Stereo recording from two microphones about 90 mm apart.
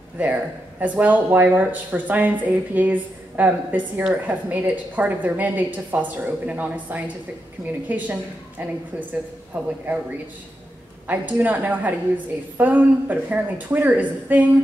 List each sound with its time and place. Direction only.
0.2 s a woman's voice: 15° right (ahead or behind)
11.1 s speech: 20° right (ahead or behind)